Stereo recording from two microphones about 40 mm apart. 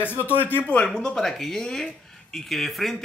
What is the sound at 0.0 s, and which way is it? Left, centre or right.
Speech, left.